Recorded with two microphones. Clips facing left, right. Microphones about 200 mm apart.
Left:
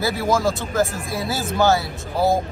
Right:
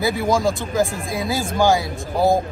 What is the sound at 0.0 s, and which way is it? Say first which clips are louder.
Speech: right 1 dB; 15° right (ahead or behind).